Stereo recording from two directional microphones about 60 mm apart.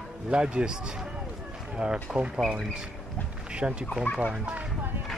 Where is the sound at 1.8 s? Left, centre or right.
Centre.